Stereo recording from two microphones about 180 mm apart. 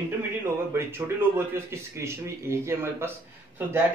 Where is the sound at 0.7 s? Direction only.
15° right (ahead or behind).